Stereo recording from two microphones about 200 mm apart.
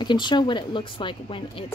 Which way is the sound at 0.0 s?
20° left (ahead or behind).